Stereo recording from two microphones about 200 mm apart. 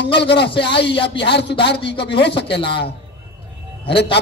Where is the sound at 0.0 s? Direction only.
55° left (ahead or behind).